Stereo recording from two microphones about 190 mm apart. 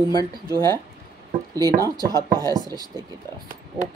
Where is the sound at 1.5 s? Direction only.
20° right (ahead or behind).